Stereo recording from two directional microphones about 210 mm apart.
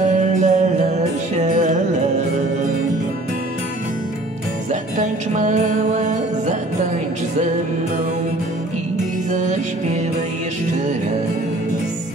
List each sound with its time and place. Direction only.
0.0 s music: 35° right (ahead or behind)
4.9 s music: 35° right (ahead or behind)
9.3 s music: 35° right (ahead or behind)